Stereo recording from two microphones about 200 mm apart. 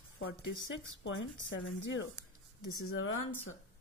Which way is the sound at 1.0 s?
70° left (ahead or behind).